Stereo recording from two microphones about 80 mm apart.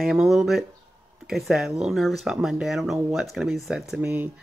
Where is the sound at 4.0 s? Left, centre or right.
Centre.